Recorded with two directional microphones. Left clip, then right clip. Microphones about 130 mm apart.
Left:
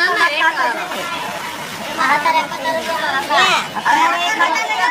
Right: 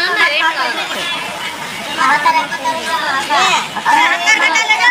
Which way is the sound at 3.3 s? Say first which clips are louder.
Right 1 dB; 25° left (ahead or behind).